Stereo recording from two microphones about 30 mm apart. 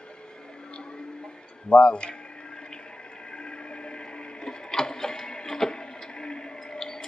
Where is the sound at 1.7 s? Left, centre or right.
Left.